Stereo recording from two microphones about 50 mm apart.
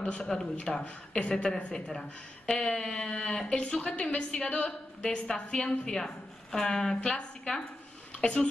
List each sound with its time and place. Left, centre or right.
0.2 s a woman's voice: centre